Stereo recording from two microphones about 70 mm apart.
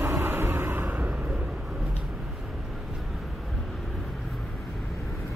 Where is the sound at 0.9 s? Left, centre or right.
Right.